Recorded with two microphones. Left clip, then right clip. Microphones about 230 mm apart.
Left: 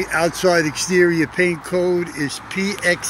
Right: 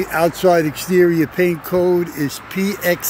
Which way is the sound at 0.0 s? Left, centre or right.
Centre.